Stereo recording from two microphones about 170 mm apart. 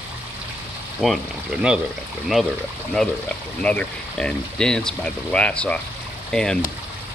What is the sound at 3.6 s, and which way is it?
Speech, 5° left (ahead or behind).